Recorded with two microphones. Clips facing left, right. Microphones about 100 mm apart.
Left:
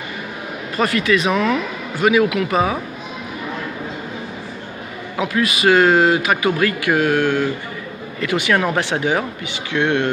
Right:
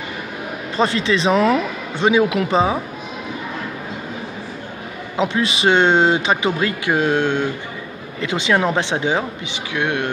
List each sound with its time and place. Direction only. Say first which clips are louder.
0.7 s speech: left 1 dB; 25° right (ahead or behind)
5.1 s speech: even; 25° right (ahead or behind); by 10.0 s 10° right (ahead or behind)